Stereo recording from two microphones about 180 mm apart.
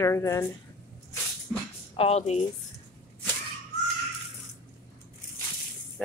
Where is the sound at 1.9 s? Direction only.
35° left (ahead or behind).